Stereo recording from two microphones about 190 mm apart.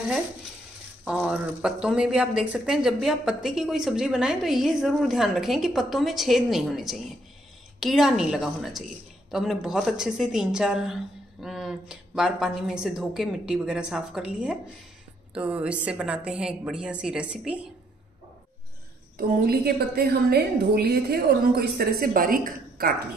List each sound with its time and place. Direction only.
1.0 s a woman's voice: 5° right (ahead or behind)
19.1 s a woman's voice: 55° right (ahead or behind)